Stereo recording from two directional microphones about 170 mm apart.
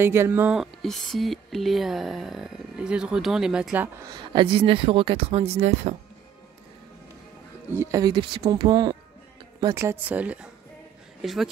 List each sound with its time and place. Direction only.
0.0 s speech: 15° right (ahead or behind)
4.1 s speech: 30° right (ahead or behind)
7.7 s speech: 20° right (ahead or behind)
9.8 s speech: 10° right (ahead or behind)